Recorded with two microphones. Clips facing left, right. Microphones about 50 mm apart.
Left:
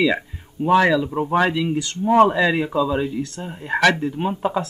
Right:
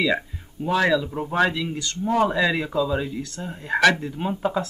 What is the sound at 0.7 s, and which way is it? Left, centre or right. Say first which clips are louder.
Speech: left 3 dB; centre.